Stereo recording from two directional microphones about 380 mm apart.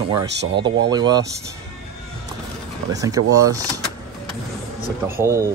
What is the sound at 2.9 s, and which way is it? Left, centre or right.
Speech, centre.